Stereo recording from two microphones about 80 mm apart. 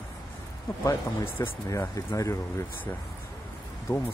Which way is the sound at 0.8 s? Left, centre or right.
Left.